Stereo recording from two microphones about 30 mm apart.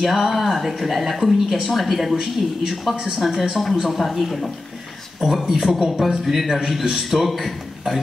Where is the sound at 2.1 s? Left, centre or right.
Centre.